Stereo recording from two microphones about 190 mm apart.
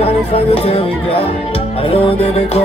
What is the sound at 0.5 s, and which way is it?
Music, 30° left (ahead or behind).